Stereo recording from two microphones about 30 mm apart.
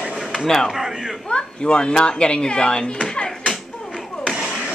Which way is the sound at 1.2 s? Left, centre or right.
Left.